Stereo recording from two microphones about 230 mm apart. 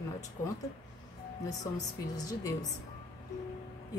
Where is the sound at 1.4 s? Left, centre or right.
Centre.